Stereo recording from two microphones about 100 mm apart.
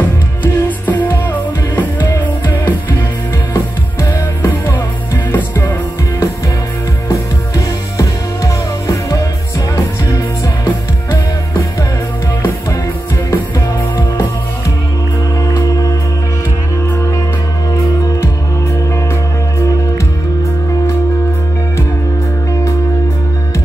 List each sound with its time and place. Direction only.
0.4 s music: 15° left (ahead or behind)
7.1 s music: 35° left (ahead or behind)